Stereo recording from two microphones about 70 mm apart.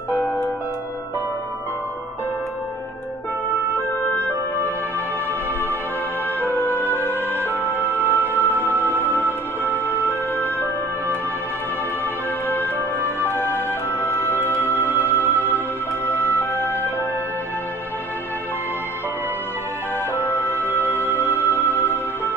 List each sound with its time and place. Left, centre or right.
3.7 s music: left
6.4 s music: left
12.4 s music: left
20.2 s music: left